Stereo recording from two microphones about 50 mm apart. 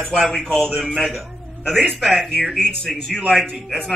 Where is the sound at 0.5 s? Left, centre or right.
Centre.